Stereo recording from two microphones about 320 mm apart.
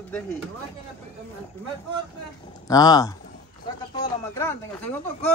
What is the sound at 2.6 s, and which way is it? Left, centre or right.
Speech, centre.